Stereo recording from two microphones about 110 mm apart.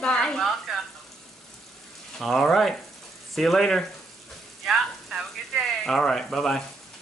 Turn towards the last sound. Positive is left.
turn(degrees=5)  # may be behind; listen again after turning